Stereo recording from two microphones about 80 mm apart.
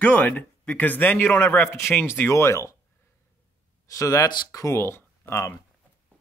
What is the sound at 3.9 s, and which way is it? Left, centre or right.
Speech, left.